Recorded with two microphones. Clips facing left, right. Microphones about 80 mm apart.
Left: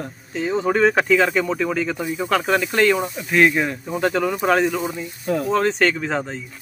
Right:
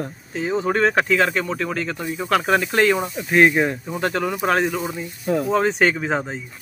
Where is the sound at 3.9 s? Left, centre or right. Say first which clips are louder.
Left 2 dB; centre.